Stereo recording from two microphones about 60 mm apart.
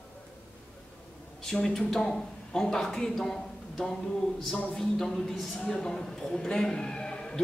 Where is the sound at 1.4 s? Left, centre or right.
Centre.